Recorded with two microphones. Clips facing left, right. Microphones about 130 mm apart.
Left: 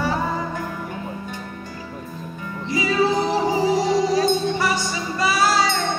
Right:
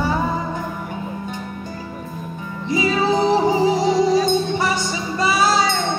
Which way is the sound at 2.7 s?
25° right (ahead or behind).